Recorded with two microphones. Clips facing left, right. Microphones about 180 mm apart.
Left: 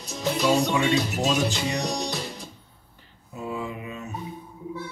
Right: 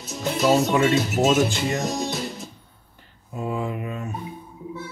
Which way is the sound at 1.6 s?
Centre (ahead or behind).